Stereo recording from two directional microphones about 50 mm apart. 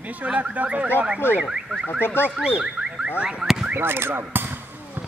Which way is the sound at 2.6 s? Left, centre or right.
Centre.